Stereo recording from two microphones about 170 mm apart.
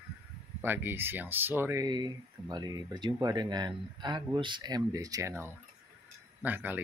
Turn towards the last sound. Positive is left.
turn(degrees=-10)  # may be behind; listen again after turning